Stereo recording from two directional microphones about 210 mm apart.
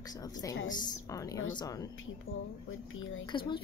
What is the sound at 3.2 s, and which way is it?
Speech, 20° left (ahead or behind).